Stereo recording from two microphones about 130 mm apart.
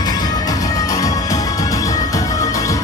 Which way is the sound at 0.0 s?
30° left (ahead or behind).